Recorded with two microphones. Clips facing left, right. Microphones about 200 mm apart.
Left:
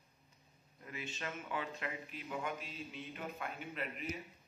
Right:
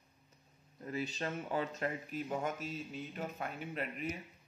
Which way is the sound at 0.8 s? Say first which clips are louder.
Right 7 dB; 35° right (ahead or behind).